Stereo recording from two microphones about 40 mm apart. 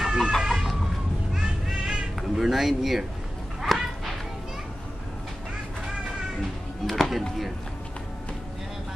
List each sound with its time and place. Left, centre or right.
0.0 s chicken: centre
0.5 s a sound: centre
1.3 s music: centre
2.3 s speech: centre
3.6 s a sound: centre
6.9 s speech: centre